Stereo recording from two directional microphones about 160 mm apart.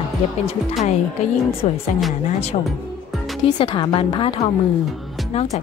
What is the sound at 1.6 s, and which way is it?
Speech, 40° left (ahead or behind).